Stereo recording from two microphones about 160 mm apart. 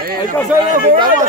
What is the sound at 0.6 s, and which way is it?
Speech, 55° right (ahead or behind).